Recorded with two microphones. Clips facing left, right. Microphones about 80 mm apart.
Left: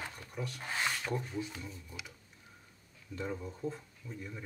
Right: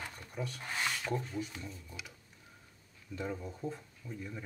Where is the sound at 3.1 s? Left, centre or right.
Centre.